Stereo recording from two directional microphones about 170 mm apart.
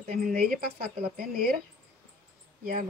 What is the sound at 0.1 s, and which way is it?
A woman's voice, 60° right (ahead or behind).